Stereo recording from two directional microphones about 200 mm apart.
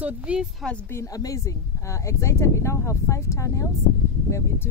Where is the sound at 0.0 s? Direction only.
5° right (ahead or behind).